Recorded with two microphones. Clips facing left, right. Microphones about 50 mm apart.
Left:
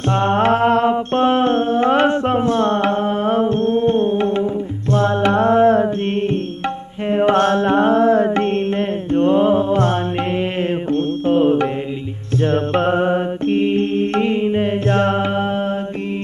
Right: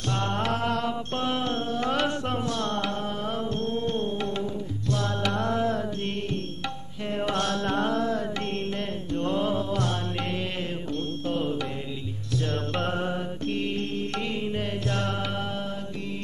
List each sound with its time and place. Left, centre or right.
0.1 s mantra: left
7.1 s music: left
12.4 s mantra: left